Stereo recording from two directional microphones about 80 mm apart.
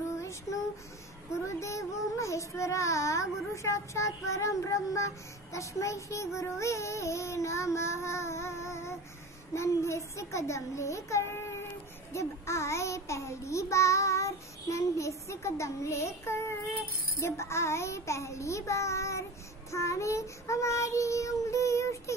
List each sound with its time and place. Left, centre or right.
0.2 s child singing: left